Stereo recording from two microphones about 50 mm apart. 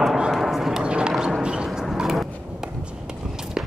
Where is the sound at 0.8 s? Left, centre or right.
Centre.